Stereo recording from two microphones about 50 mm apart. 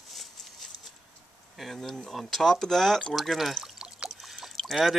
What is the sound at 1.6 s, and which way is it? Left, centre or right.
Speech, centre.